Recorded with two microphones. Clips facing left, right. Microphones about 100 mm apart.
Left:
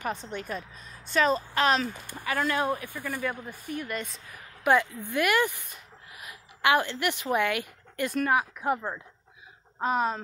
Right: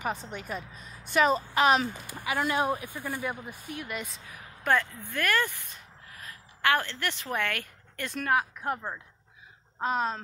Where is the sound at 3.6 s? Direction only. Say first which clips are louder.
Left 4 dB; 5° right (ahead or behind).